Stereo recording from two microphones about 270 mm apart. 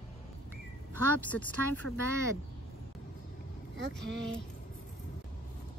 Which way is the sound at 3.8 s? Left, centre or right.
Right.